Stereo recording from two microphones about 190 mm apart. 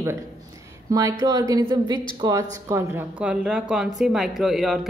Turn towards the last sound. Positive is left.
turn(degrees=0)  # may be behind; listen again after turning